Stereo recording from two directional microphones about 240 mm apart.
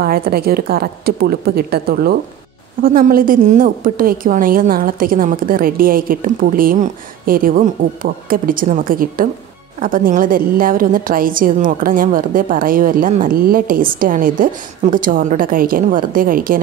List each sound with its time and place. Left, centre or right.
0.0 s a woman's voice: right